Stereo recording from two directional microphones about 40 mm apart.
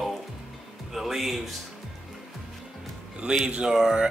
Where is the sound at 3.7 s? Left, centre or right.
Centre.